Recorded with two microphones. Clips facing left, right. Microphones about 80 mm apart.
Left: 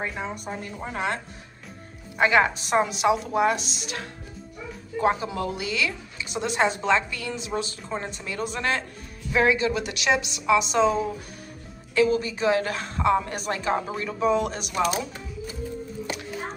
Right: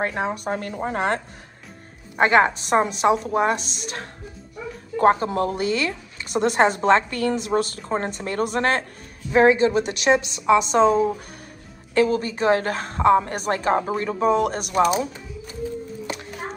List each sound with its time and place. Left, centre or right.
0.0 s speech: right
0.7 s a woman's voice: right
9.3 s a woman's voice: right